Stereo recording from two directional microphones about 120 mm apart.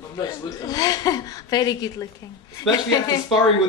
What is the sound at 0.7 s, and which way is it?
Speech, 30° left (ahead or behind).